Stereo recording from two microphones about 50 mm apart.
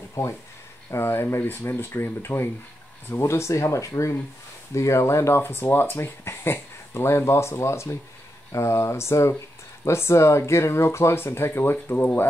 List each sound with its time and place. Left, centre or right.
0.2 s speech: left
0.8 s speech: left
1.7 s speech: left
3.2 s speech: left
5.4 s speech: left